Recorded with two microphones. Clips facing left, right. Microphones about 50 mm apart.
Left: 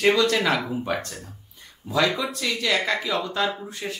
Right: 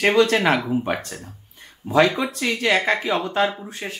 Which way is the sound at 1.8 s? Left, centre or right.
Right.